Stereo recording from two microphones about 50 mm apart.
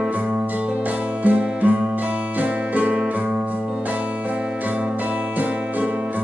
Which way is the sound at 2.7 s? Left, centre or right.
Right.